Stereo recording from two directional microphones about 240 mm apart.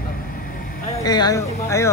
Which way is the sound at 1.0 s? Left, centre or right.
Centre.